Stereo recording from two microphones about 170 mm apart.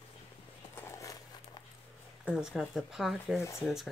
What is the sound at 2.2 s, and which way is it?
A woman's voice, 5° right (ahead or behind).